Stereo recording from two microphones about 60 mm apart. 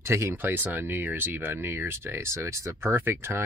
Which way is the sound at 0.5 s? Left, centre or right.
Right.